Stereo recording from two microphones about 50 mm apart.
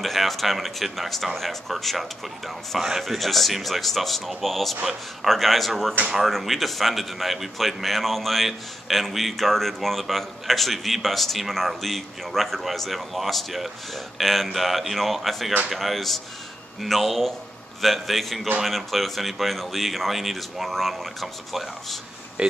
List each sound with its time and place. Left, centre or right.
0.0 s speech: centre
22.4 s speech: right